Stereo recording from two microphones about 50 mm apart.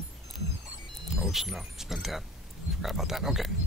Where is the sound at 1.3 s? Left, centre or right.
Centre.